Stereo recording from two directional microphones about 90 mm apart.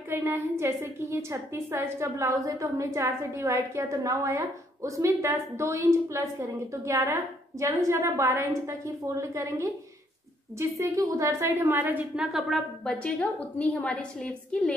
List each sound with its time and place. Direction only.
0.1 s a woman's voice: 25° right (ahead or behind)
11.6 s a woman's voice: 20° right (ahead or behind)
12.2 s a woman's voice: 5° right (ahead or behind)
13.0 s a woman's voice: 15° left (ahead or behind)